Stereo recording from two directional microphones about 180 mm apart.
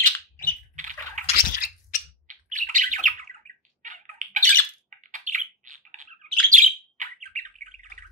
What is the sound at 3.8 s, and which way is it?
Squawk, 50° right (ahead or behind).